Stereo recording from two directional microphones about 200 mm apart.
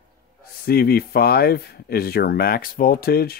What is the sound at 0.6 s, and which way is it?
Speech, 50° left (ahead or behind).